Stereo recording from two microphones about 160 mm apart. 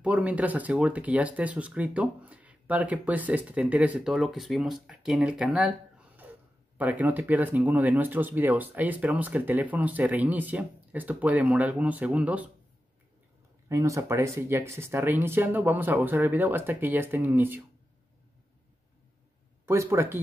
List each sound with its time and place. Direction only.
0.0 s speech: 10° right (ahead or behind)
13.7 s speech: 20° right (ahead or behind)
19.6 s speech: 15° right (ahead or behind)